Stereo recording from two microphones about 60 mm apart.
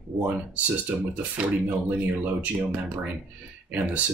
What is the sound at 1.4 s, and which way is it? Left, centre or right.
Speech, centre.